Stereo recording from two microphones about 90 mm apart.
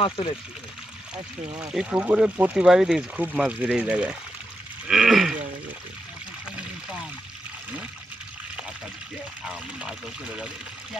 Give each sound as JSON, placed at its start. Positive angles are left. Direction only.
{"t": 0.2, "sound": "speech", "side_deg": 80}
{"t": 1.7, "sound": "speech", "side_deg": -10}
{"t": 4.8, "sound": "a sound", "side_deg": -5}
{"t": 9.4, "sound": "speech", "side_deg": -10}